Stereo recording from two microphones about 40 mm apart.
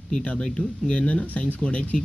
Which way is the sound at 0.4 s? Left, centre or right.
Left.